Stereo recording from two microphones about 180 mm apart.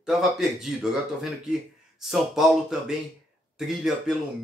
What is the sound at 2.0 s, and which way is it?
Speech, centre (ahead or behind).